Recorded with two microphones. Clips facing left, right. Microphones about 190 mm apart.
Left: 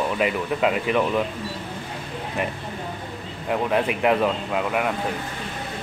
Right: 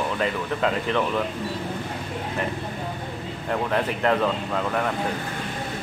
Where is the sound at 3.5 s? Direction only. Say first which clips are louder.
Left 2 dB; 10° left (ahead or behind).